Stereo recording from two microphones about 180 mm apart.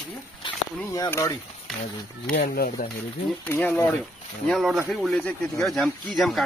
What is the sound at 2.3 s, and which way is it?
Speech, 60° left (ahead or behind).